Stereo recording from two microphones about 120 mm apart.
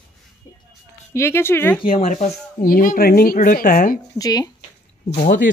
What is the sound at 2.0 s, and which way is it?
Speech, 90° left.